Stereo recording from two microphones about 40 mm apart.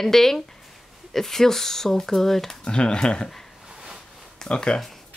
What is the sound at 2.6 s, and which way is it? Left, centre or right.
Speech, left.